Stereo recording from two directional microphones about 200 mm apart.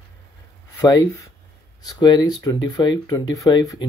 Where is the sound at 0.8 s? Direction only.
15° left (ahead or behind).